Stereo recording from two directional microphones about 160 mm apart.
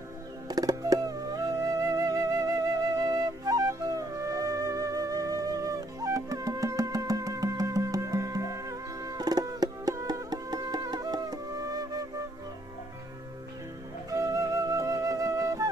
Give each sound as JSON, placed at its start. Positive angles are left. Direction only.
{"t": 0.5, "sound": "music", "side_deg": -20}
{"t": 3.0, "sound": "flute", "side_deg": -20}
{"t": 14.1, "sound": "music", "side_deg": -20}